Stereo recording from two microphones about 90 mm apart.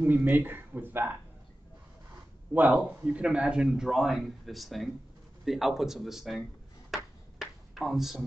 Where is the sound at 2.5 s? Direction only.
20° right (ahead or behind); by 6.4 s 5° right (ahead or behind).